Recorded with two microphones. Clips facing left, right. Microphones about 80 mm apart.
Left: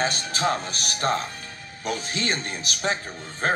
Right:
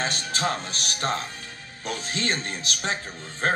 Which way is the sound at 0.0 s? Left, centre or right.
Centre.